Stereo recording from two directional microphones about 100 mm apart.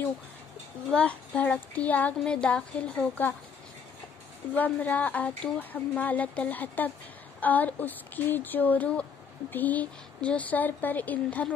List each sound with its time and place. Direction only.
0.9 s speech: 15° left (ahead or behind)
4.6 s speech: 15° left (ahead or behind)